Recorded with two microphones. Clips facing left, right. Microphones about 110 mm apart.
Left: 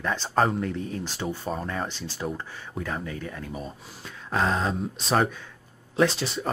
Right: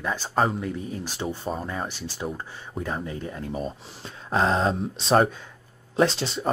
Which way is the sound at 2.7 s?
20° right (ahead or behind).